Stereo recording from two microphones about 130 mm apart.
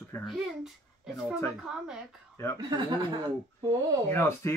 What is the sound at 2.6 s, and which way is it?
Speech, 35° right (ahead or behind).